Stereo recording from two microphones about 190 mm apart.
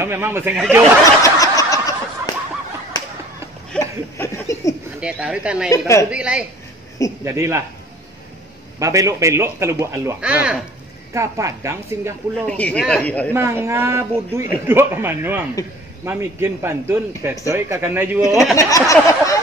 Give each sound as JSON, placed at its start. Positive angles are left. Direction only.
{"t": 0.0, "sound": "a man's voice", "side_deg": -10}
{"t": 1.2, "sound": "snicker", "side_deg": 15}
{"t": 2.9, "sound": "a sound", "side_deg": 20}
{"t": 5.0, "sound": "speech", "side_deg": -5}
{"t": 5.7, "sound": "speech", "side_deg": 15}
{"t": 6.0, "sound": "a man's voice", "side_deg": -5}
{"t": 8.7, "sound": "a man's voice", "side_deg": -15}
{"t": 12.4, "sound": "speech", "side_deg": 5}
{"t": 13.3, "sound": "a man's voice", "side_deg": -10}
{"t": 18.6, "sound": "a sound", "side_deg": 15}